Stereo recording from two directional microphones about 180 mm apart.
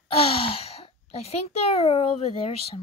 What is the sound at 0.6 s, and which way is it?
A child's voice, 30° left (ahead or behind).